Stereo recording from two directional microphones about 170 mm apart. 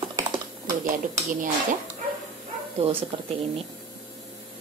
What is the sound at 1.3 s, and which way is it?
Speech, 50° right (ahead or behind).